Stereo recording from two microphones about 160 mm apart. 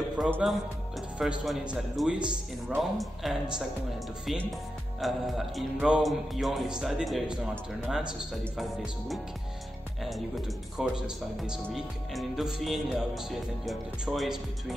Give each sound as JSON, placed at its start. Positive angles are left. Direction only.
{"t": 0.3, "sound": "speech", "side_deg": -5}